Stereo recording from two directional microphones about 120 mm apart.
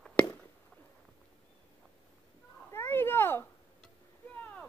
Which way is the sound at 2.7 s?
20° left (ahead or behind).